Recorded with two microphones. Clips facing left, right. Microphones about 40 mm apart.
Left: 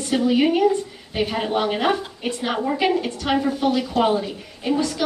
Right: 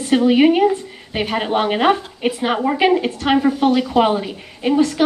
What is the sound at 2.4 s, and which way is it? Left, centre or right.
Speech, right.